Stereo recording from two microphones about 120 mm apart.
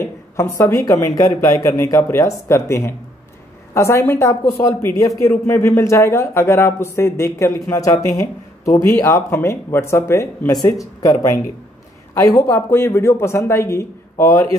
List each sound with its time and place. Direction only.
0.0 s a sound: 20° left (ahead or behind)
1.0 s speech: 30° left (ahead or behind)
12.4 s speech: 25° left (ahead or behind)